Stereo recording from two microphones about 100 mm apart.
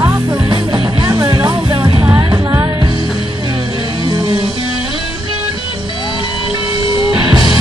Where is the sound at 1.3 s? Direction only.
45° right (ahead or behind).